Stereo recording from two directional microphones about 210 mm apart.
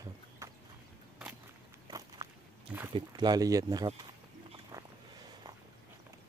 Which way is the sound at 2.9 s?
20° right (ahead or behind).